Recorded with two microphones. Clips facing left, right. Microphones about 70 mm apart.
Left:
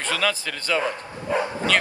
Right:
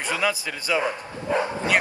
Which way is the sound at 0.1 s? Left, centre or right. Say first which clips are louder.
Even; centre.